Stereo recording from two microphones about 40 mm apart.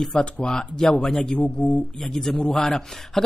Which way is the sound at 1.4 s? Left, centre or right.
Left.